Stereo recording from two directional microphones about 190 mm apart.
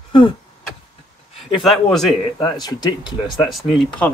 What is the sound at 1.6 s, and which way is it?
Speech, centre (ahead or behind).